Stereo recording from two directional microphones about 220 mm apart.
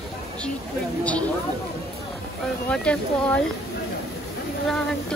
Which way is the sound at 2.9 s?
5° left (ahead or behind).